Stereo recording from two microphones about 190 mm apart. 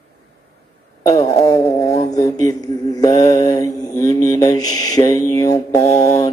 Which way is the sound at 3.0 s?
15° left (ahead or behind).